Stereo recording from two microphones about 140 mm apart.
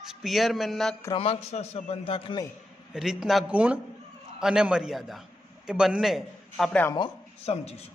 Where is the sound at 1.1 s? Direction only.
45° left (ahead or behind).